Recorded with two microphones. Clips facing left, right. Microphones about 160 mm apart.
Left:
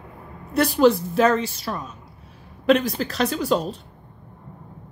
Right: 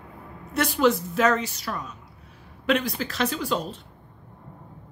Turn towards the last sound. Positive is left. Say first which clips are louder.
# left 5 dB
turn(degrees=40)  # may be behind; listen again after turning